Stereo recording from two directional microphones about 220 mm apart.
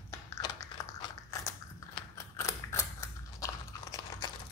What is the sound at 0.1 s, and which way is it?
Biting, 15° left (ahead or behind).